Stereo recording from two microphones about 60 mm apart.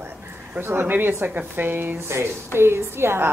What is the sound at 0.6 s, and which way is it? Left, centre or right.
Speech, right.